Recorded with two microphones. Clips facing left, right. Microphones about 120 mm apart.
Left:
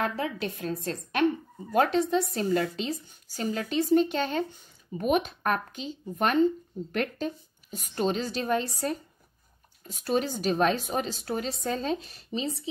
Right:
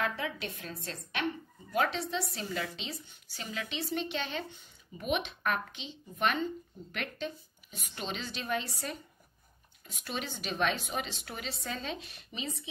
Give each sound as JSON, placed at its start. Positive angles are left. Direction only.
{"t": 0.0, "sound": "a woman's voice", "side_deg": 40}